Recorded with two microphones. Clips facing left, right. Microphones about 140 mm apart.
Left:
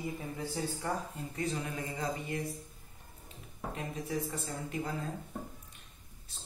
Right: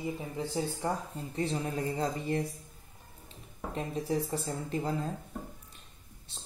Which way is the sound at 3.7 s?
30° right (ahead or behind).